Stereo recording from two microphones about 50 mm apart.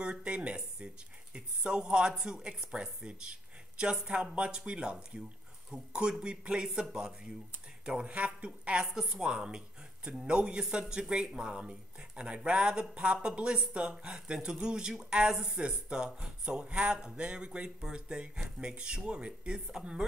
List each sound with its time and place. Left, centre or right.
0.0 s speech: centre